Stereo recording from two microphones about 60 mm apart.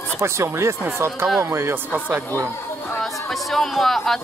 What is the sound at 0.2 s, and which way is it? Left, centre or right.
Speech, right.